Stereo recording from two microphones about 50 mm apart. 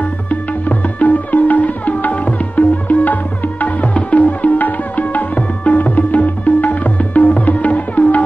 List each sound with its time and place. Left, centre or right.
0.3 s tabla: left